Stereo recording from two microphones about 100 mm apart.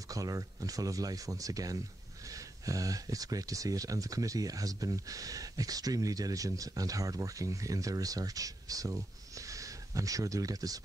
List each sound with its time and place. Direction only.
0.1 s speech: 35° right (ahead or behind)